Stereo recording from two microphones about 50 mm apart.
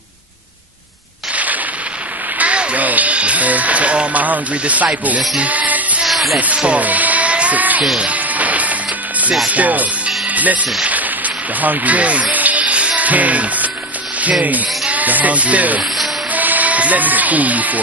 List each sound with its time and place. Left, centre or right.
1.3 s gunshot: right
2.3 s speech: right
6.0 s music: centre
6.4 s speech: right
8.0 s music: right
9.5 s speech: right